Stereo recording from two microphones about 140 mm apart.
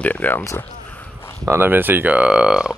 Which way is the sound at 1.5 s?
15° right (ahead or behind).